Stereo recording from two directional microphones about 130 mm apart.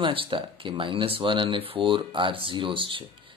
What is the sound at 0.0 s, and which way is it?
Speech, 40° right (ahead or behind).